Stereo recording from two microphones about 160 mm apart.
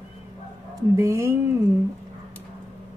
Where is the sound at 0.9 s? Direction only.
20° right (ahead or behind).